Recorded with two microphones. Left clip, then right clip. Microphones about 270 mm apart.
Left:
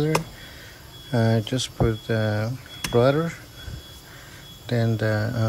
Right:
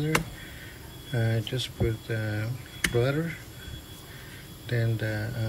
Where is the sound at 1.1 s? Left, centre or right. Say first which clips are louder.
Left 8 dB; left.